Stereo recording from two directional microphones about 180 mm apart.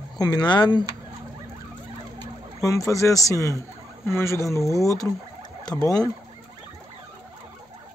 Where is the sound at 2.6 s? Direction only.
20° left (ahead or behind).